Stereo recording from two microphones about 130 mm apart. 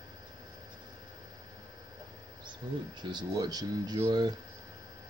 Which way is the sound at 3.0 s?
35° right (ahead or behind).